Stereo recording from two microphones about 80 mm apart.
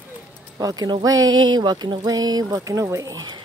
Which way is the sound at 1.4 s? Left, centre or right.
Right.